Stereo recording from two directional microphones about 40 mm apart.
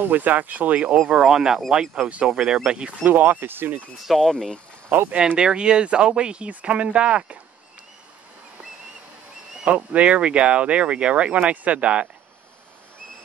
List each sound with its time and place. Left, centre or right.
0.0 s speech: right
1.1 s speech: centre
3.1 s speech: right
4.0 s speech: centre
4.3 s speech: centre
4.8 s speech: right
5.4 s speech: right
9.7 s speech: right